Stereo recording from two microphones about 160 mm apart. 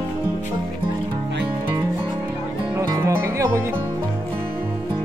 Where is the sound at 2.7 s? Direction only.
20° right (ahead or behind).